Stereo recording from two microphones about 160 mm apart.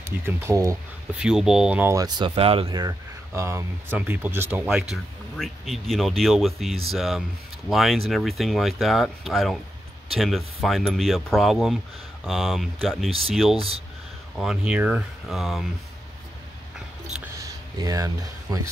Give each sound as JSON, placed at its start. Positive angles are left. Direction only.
{"t": 0.0, "sound": "speech", "side_deg": -15}
{"t": 1.1, "sound": "speech", "side_deg": -5}
{"t": 4.9, "sound": "speech", "side_deg": 0}
{"t": 13.6, "sound": "speech", "side_deg": -35}
{"t": 14.3, "sound": "speech", "side_deg": -5}
{"t": 17.4, "sound": "a sound", "side_deg": -20}